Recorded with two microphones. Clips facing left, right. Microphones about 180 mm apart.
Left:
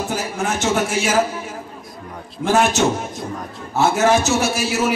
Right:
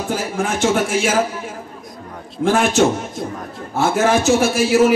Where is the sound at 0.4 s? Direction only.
55° right (ahead or behind).